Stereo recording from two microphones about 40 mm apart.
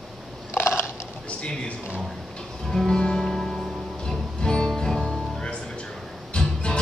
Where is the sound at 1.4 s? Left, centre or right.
Left.